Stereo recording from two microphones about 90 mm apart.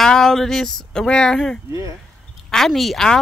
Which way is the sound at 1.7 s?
35° right (ahead or behind).